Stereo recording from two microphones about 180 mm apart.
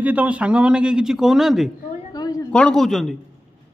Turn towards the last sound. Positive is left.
turn(degrees=0)  # may be behind; listen again after turning